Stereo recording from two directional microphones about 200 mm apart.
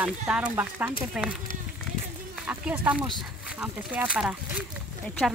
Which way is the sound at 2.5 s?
5° right (ahead or behind).